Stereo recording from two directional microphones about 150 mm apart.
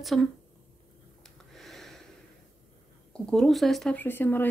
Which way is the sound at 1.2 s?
Centre (ahead or behind).